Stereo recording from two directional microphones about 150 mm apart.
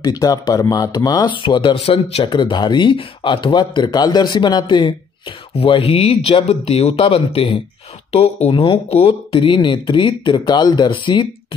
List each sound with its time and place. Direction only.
0.0 s speech: 25° left (ahead or behind)